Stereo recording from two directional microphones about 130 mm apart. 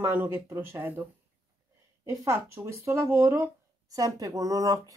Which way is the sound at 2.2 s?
20° right (ahead or behind).